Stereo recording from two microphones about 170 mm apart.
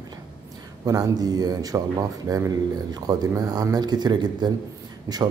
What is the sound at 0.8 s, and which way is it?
Speech, 20° right (ahead or behind).